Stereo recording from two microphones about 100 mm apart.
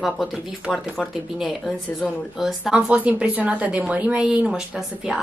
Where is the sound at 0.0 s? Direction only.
Centre (ahead or behind).